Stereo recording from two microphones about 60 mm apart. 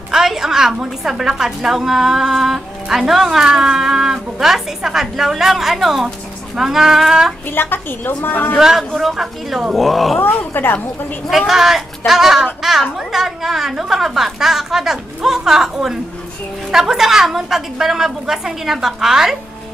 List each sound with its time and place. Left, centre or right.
0.1 s a sound: centre
1.0 s a woman's voice: centre
7.5 s a woman's voice: left
8.5 s a woman's voice: centre
10.2 s a woman's voice: left
11.2 s a woman's voice: centre